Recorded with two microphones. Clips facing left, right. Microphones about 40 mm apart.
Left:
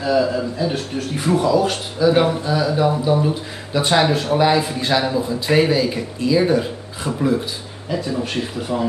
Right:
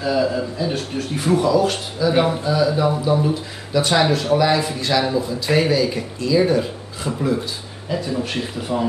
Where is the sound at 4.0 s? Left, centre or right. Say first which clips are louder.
Even; left.